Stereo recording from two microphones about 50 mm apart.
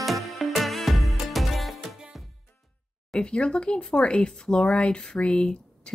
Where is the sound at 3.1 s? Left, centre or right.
Centre.